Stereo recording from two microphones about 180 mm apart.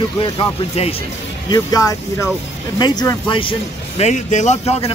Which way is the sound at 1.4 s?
20° left (ahead or behind).